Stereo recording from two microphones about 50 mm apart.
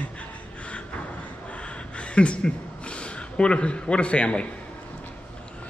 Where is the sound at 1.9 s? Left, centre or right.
Left.